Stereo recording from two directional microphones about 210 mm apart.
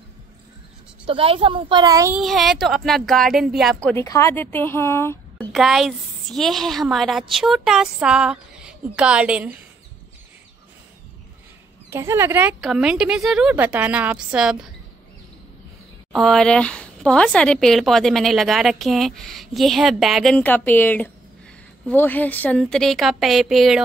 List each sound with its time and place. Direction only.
1.0 s a woman's voice: 25° right (ahead or behind)
2.1 s speech: centre (ahead or behind)
3.9 s speech: 10° left (ahead or behind)
5.5 s speech: centre (ahead or behind)
11.9 s speech: 10° right (ahead or behind)
16.1 s speech: centre (ahead or behind)